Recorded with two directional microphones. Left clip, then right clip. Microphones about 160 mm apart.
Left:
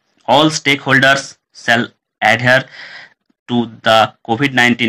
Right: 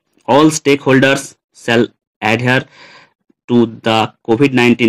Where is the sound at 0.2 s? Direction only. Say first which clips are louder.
Right 1 dB; 30° right (ahead or behind).